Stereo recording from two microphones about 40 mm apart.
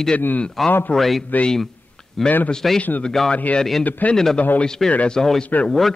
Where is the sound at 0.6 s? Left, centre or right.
Centre.